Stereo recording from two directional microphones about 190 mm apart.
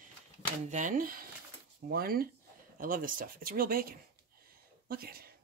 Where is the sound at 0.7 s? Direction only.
45° right (ahead or behind).